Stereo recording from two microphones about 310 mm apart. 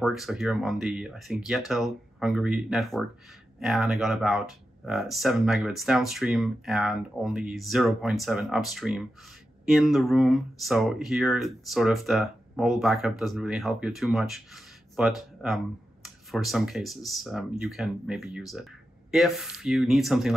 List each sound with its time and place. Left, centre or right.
0.0 s speech: centre